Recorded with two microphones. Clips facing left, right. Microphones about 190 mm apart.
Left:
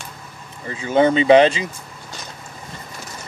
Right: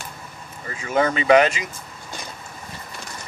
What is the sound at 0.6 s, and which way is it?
Speech, 30° left (ahead or behind).